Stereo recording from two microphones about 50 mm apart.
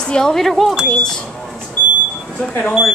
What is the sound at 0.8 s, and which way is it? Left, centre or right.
Speech, centre.